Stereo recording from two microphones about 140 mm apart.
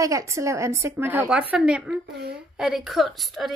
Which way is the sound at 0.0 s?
20° right (ahead or behind).